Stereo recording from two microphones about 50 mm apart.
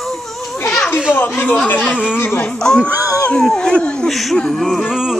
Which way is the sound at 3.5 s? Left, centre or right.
Left.